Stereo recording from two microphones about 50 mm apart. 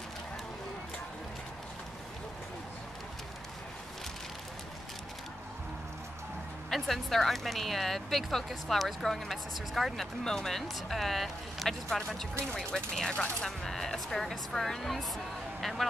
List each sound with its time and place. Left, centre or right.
6.7 s speech: centre
13.1 s speech: left
13.6 s speech: centre